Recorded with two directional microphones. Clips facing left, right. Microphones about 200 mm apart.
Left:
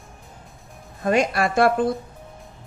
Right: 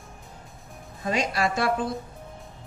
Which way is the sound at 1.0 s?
55° left (ahead or behind).